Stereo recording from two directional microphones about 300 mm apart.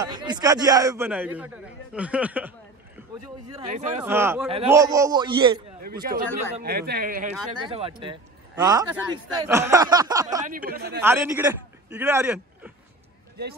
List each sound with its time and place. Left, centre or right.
0.0 s a man's voice: centre
3.4 s speech: centre
4.0 s a man's voice: centre
6.0 s speech: right
7.6 s a man's voice: centre
10.4 s speech: right
11.0 s speech: centre